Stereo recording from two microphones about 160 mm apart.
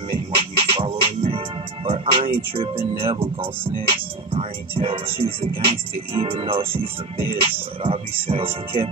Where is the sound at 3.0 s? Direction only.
35° right (ahead or behind).